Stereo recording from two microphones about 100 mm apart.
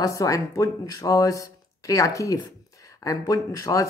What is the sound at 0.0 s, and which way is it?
Speech, 35° left (ahead or behind).